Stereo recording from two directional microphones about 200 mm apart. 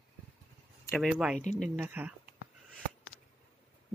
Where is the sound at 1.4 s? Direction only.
35° left (ahead or behind).